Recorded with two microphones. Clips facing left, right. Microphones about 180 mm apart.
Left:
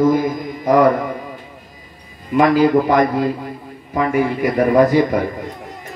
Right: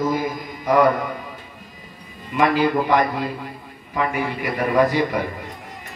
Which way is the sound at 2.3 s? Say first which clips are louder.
Left 6 dB; 40° left (ahead or behind).